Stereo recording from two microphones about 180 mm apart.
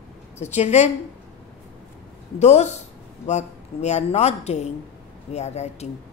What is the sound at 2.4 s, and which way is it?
A man's voice, 40° left (ahead or behind).